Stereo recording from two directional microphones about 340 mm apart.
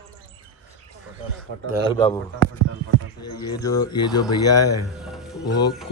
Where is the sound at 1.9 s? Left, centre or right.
Centre.